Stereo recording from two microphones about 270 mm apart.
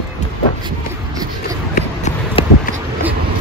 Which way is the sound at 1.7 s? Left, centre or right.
Left.